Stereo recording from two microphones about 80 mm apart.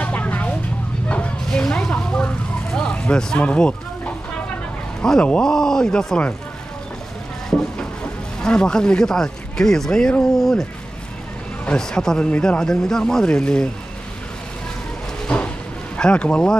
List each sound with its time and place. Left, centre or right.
0.0 s vehicle: centre
1.0 s bow-wow: centre
5.0 s speech: centre
7.4 s speech: centre
15.2 s a sound: centre
16.0 s speech: centre